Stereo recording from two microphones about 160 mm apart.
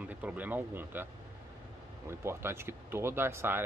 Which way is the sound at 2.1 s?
15° right (ahead or behind).